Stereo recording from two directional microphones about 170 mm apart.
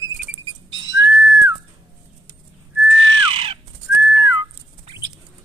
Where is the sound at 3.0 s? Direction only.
30° right (ahead or behind).